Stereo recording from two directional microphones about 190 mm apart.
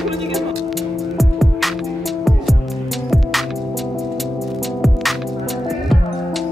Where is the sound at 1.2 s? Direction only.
Centre (ahead or behind).